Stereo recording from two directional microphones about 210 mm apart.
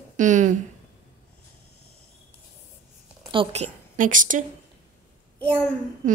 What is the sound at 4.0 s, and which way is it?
Speech, 40° right (ahead or behind).